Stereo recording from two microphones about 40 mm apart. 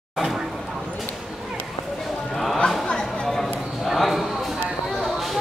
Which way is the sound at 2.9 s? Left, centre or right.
Left.